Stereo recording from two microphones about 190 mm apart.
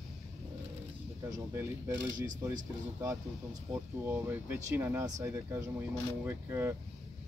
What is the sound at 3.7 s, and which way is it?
Speech, 10° right (ahead or behind).